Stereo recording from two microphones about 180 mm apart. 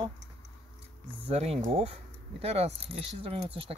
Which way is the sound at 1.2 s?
35° right (ahead or behind).